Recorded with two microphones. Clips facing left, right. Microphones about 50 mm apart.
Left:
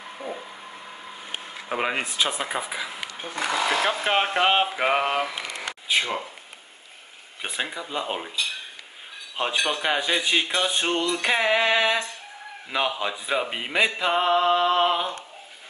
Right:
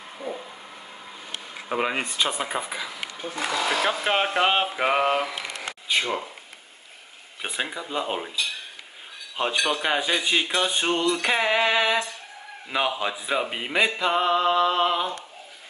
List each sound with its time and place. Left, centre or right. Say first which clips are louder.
1.7 s speech: even; centre
3.2 s speech: left 1 dB; left
3.8 s speech: even; centre
7.4 s speech: even; centre
9.4 s speech: right 1 dB; centre